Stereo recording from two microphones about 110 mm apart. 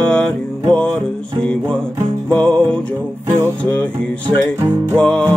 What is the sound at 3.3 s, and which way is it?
Music, 25° right (ahead or behind).